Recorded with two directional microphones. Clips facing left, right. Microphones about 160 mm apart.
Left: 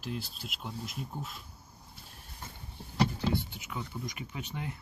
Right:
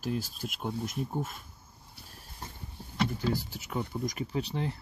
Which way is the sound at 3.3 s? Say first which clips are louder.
Right 1 dB; 40° right (ahead or behind).